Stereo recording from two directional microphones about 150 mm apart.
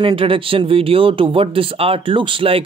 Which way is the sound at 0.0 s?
35° right (ahead or behind).